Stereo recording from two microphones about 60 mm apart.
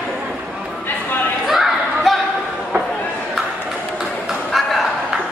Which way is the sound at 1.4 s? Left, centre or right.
Centre.